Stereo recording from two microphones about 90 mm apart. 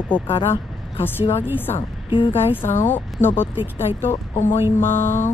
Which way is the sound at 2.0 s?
70° left (ahead or behind).